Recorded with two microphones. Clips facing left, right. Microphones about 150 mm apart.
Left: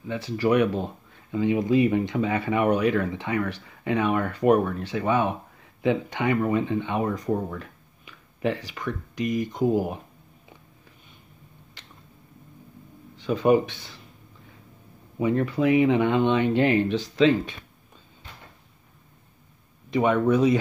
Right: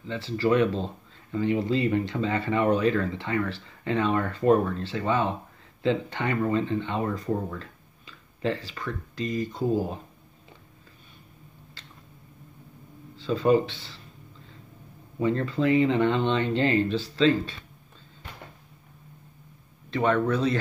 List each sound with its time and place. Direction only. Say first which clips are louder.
0.0 s speech: left 1 dB; 15° left (ahead or behind)
11.8 s a sound: even; 20° left (ahead or behind)
13.1 s speech: left 2 dB; 15° left (ahead or behind)
15.1 s speech: left 2 dB; 15° left (ahead or behind)
19.9 s speech: left 3 dB; 15° left (ahead or behind)